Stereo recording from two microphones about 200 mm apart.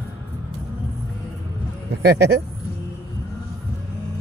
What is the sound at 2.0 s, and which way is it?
Speech, 55° right (ahead or behind).